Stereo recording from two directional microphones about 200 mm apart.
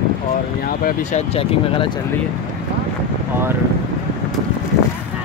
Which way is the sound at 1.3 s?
25° left (ahead or behind).